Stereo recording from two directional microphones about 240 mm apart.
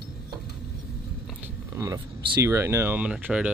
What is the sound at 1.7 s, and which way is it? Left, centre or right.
Speech, centre.